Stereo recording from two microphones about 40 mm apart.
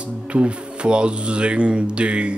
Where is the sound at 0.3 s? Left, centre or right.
Right.